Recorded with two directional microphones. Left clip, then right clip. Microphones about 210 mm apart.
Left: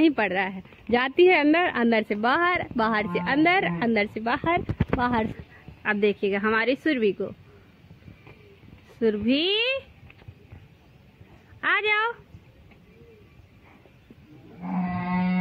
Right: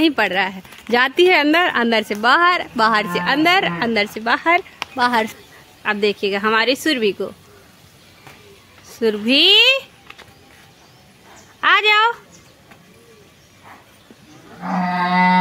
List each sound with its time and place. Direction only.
0.0 s speech: 10° right (ahead or behind)
9.0 s speech: 15° right (ahead or behind)
11.6 s speech: 10° right (ahead or behind)